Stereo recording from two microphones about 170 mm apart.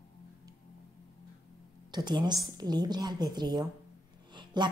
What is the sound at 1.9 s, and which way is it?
A woman's voice, 25° right (ahead or behind).